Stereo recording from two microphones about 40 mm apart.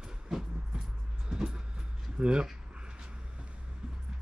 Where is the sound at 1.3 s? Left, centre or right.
Centre.